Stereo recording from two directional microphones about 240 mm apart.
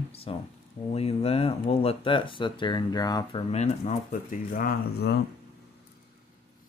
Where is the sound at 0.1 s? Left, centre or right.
Left.